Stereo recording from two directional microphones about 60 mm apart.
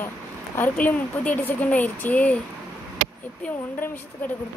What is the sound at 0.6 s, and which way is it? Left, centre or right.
Speech, left.